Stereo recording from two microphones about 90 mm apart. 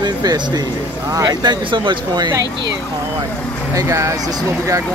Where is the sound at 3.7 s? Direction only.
35° right (ahead or behind).